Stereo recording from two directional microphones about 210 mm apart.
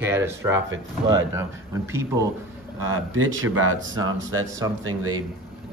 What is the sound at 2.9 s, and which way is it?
Speech, 70° right (ahead or behind).